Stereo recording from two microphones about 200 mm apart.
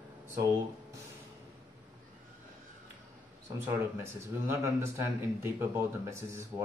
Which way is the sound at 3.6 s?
10° right (ahead or behind).